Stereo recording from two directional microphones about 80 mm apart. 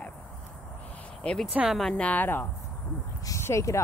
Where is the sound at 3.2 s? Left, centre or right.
Left.